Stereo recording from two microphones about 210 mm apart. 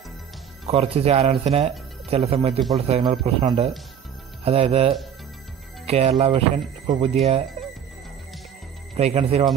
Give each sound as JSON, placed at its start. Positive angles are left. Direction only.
{"t": 0.7, "sound": "speech", "side_deg": -30}
{"t": 8.9, "sound": "speech", "side_deg": -30}